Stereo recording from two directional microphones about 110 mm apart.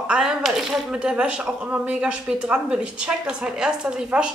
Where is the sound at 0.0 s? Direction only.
10° right (ahead or behind).